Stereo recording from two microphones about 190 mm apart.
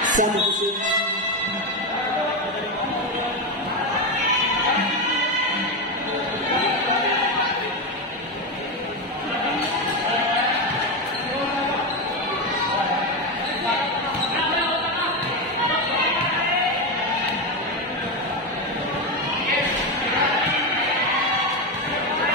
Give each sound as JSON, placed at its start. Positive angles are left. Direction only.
{"t": 0.1, "sound": "speech", "side_deg": -40}